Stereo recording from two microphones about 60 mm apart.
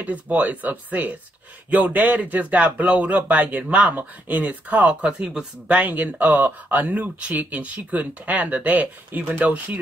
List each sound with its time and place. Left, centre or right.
0.0 s a man's voice: right